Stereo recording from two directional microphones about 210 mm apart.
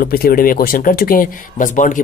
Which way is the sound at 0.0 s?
45° left (ahead or behind).